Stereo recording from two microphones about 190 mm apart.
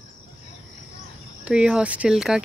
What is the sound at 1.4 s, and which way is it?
Speech, 5° right (ahead or behind).